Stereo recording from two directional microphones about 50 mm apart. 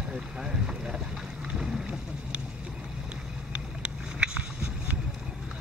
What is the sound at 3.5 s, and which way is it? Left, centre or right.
Boat, centre.